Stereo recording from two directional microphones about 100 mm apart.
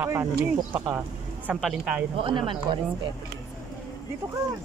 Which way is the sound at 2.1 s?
60° right (ahead or behind).